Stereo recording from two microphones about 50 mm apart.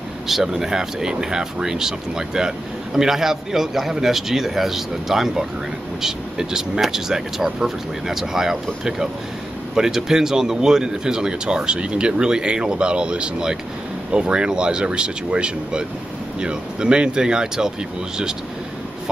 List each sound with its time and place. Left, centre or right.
0.3 s speech: centre
9.8 s speech: centre